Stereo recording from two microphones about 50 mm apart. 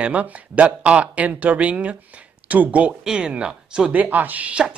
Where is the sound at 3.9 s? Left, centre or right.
Right.